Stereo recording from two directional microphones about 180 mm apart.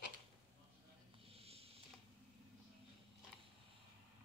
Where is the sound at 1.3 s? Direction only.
35° right (ahead or behind).